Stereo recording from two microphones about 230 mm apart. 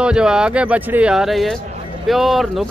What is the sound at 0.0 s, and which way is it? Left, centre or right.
Speech, centre.